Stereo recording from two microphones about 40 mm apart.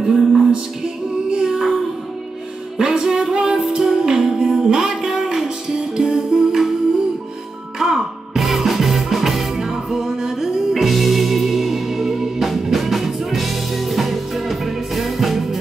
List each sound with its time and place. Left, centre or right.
0.0 s music: centre
1.3 s child singing: centre
2.8 s music: centre
7.8 s music: centre
10.8 s music: centre